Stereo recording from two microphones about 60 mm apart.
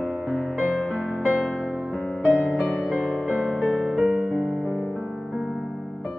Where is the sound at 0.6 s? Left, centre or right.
Centre.